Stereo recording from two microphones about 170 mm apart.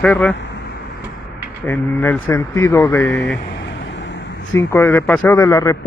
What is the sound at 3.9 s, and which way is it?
Vehicle, 90° left.